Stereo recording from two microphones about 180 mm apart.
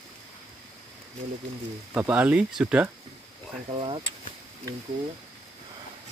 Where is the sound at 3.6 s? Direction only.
30° right (ahead or behind).